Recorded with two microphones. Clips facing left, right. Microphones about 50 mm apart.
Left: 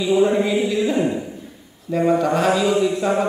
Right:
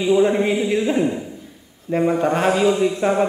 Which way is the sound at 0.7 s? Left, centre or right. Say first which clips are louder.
Right 1 dB; right.